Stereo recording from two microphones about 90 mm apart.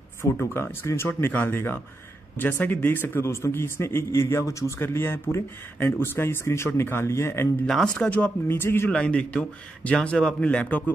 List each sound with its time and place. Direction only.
0.2 s a man's voice: 30° left (ahead or behind)
7.6 s speech: 10° left (ahead or behind)
8.5 s a man's voice: 25° left (ahead or behind)
8.9 s speech: 15° left (ahead or behind)